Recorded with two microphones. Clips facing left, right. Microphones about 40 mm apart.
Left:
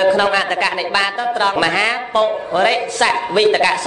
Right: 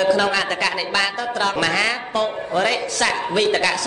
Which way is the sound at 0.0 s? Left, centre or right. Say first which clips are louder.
Left 4 dB; left.